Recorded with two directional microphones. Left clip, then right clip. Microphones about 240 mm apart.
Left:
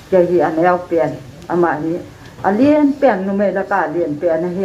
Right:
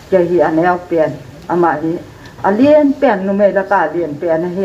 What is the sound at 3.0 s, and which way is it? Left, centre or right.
Speech, right.